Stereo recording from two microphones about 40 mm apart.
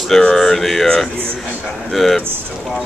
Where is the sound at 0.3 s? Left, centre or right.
Centre.